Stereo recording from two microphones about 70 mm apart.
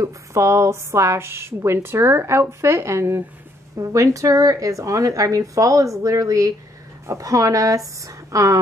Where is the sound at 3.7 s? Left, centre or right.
Right.